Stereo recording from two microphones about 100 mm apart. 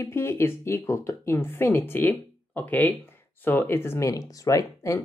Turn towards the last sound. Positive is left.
turn(degrees=35)  # may be behind; listen again after turning